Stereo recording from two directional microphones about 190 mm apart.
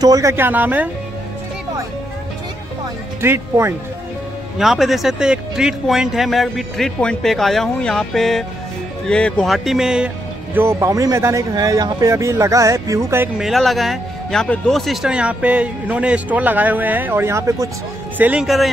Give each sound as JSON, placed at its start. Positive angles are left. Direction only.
{"t": 0.0, "sound": "speech", "side_deg": -20}
{"t": 3.2, "sound": "speech", "side_deg": -15}
{"t": 4.6, "sound": "speech", "side_deg": 0}
{"t": 13.4, "sound": "speech", "side_deg": 0}